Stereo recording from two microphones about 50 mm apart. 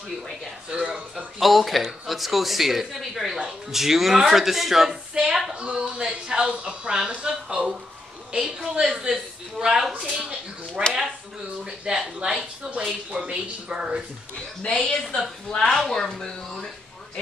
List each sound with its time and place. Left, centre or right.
0.7 s speech: centre
1.4 s speech: centre
5.5 s speech: right
14.8 s speech: centre